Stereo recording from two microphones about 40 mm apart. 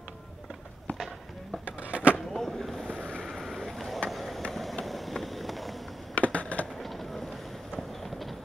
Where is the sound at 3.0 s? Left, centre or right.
Left.